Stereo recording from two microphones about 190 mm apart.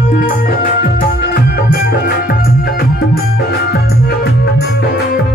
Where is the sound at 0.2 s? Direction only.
45° left (ahead or behind).